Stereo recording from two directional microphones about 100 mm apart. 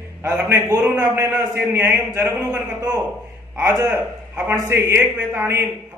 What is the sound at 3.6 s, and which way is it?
Speech, 25° right (ahead or behind).